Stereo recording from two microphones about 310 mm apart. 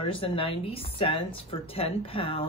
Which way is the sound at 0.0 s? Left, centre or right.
Centre.